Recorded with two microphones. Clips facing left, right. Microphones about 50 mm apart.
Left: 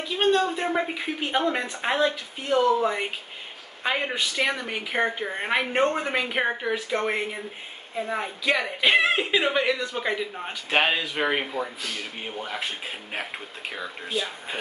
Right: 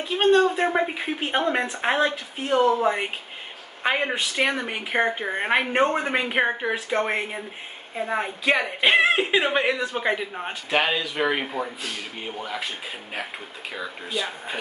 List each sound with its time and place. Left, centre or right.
0.3 s speech: centre
10.7 s speech: centre